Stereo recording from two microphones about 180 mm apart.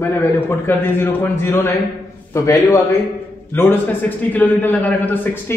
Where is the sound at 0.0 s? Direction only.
10° left (ahead or behind).